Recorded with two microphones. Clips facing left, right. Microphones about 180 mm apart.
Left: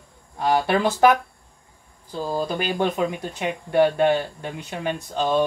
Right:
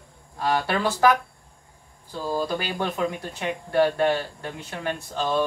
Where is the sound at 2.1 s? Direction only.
20° left (ahead or behind).